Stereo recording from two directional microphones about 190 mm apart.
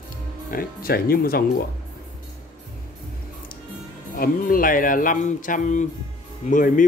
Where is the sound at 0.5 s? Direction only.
50° left (ahead or behind).